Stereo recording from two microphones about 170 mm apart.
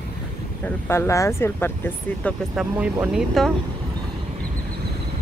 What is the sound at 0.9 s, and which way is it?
Speech, 15° left (ahead or behind).